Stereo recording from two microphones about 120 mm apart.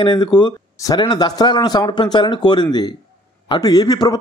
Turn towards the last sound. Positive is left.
turn(degrees=35)  # may be behind; listen again after turning